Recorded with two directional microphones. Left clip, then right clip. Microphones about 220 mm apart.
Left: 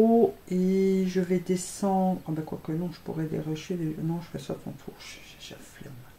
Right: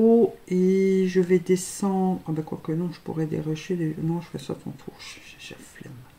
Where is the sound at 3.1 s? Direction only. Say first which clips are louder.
Right 3 dB; 30° right (ahead or behind).